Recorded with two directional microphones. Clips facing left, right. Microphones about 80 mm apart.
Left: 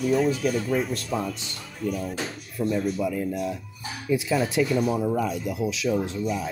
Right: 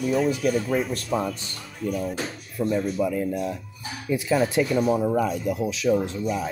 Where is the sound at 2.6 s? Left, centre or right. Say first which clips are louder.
Right 1 dB; right.